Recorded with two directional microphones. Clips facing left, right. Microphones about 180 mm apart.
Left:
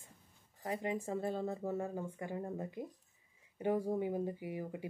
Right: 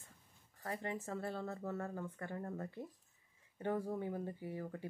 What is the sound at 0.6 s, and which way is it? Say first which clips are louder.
Speech: left 5 dB; 15° left (ahead or behind).